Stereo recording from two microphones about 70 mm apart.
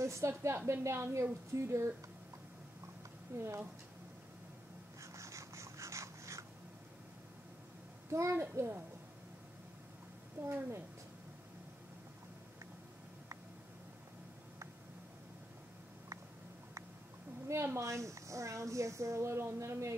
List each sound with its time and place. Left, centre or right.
0.0 s a woman's voice: right
3.3 s a child's voice: right
5.0 s a sound: right
8.1 s a child's voice: right
10.4 s a woman's voice: right
17.5 s a woman's voice: right